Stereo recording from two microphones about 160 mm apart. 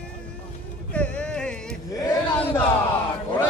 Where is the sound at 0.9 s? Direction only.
5° left (ahead or behind).